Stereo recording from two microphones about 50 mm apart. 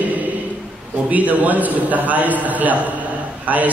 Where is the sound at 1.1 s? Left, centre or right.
Right.